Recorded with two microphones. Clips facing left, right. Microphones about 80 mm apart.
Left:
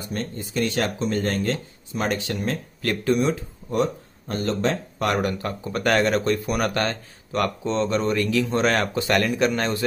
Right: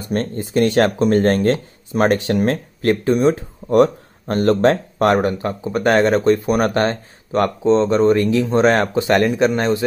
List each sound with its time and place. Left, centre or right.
0.1 s speech: right
2.8 s speech: right